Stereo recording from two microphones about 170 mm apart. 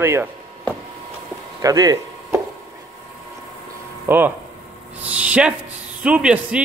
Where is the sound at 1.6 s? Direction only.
20° right (ahead or behind).